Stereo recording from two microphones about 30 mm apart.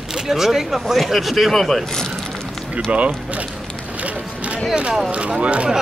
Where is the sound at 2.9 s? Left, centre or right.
Right.